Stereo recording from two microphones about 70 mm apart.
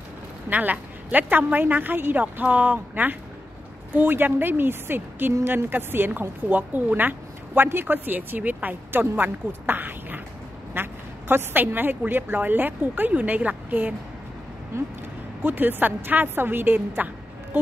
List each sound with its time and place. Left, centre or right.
0.5 s a woman's voice: right
14.7 s speech: right
15.4 s a woman's voice: right